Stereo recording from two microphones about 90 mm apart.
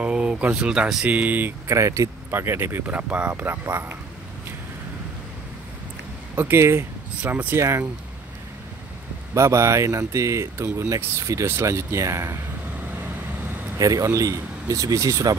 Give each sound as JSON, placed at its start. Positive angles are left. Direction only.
{"t": 0.0, "sound": "speech", "side_deg": -10}
{"t": 1.7, "sound": "speech", "side_deg": -35}
{"t": 6.3, "sound": "speech", "side_deg": -25}
{"t": 7.2, "sound": "speech", "side_deg": -15}
{"t": 7.5, "sound": "speech", "side_deg": -30}
{"t": 9.3, "sound": "speech", "side_deg": -30}
{"t": 13.7, "sound": "speech", "side_deg": -40}